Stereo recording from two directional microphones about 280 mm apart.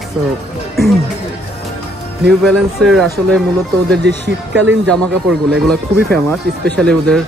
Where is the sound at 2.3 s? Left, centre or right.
Centre.